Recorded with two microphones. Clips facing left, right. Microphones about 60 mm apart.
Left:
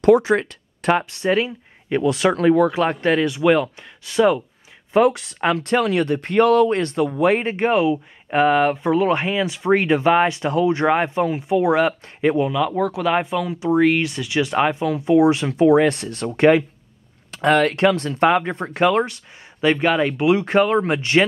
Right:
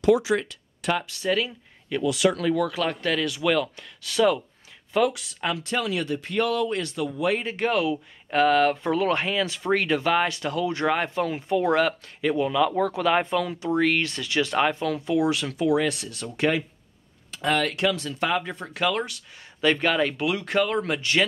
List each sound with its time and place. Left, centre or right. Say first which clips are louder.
0.0 s speech: left 6 dB; left
4.9 s speech: left 7 dB; left
7.5 s speech: left 6 dB; left
12.2 s speech: left 6 dB; left
12.4 s speech: left 2 dB; centre; by 19.2 s left
19.6 s speech: left 4 dB; centre
20.2 s speech: left 8 dB; left